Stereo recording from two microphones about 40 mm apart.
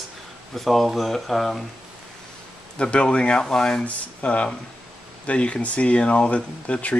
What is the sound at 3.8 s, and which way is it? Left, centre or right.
Speech, left.